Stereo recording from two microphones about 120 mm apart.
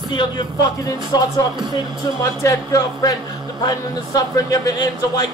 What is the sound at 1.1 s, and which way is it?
Speech, 35° left (ahead or behind).